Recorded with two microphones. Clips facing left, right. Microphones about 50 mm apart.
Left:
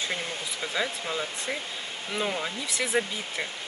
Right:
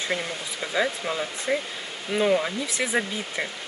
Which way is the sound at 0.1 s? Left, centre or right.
Centre.